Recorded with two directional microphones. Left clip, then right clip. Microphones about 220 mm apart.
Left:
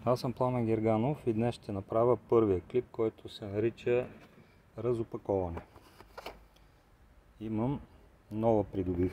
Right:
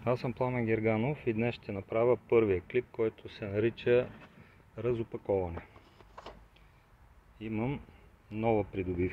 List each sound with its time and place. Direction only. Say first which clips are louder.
0.0 s speech: left 1 dB; 20° left (ahead or behind)
7.3 s speech: left 1 dB; 20° left (ahead or behind)